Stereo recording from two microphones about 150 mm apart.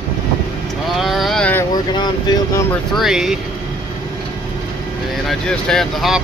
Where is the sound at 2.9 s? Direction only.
Centre (ahead or behind).